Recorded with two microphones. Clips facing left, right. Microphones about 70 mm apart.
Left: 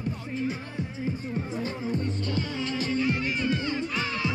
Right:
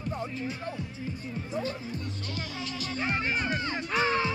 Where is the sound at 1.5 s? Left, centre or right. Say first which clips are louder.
Left 1 dB; left.